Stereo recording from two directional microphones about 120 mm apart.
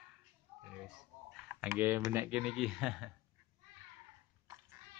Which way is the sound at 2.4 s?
5° right (ahead or behind).